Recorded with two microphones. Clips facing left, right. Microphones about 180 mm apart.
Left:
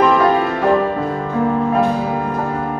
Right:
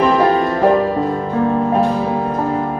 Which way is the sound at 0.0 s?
30° right (ahead or behind).